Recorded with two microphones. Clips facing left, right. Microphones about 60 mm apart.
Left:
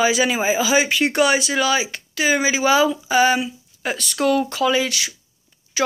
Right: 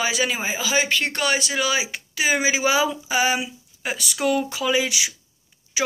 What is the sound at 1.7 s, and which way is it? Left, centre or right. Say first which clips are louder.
Speech: left 4 dB; centre.